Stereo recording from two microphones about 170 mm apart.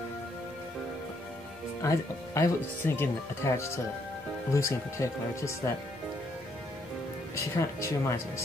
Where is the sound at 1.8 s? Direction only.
20° left (ahead or behind).